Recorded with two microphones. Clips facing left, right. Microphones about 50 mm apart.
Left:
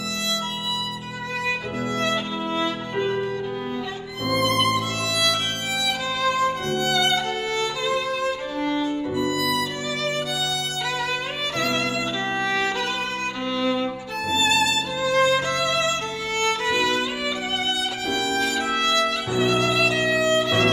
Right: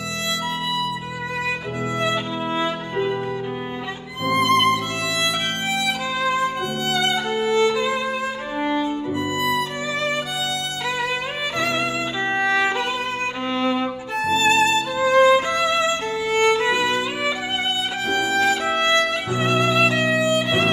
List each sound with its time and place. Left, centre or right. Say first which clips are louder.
2.0 s music: right 2 dB; centre
4.3 s music: right 4 dB; right
11.5 s music: right 1 dB; centre
18.1 s music: right 5 dB; right